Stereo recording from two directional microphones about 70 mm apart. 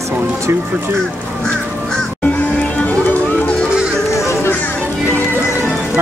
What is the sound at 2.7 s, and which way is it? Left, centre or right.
Music, left.